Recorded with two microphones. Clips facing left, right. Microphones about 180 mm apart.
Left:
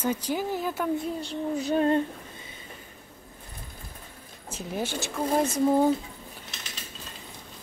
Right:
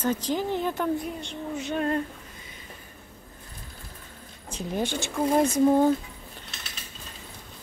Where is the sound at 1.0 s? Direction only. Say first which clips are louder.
Left 3 dB; 35° left (ahead or behind).